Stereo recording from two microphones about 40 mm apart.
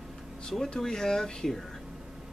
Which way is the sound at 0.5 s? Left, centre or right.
Centre.